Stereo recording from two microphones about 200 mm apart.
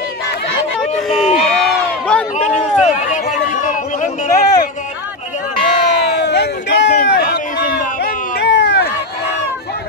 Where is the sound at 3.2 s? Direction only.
40° left (ahead or behind).